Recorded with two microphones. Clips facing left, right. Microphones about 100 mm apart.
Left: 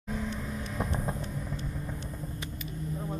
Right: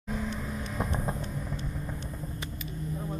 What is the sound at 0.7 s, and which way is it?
Vehicle, 20° right (ahead or behind).